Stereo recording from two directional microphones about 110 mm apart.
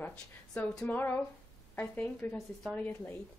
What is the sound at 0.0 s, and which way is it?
Speech, 15° left (ahead or behind).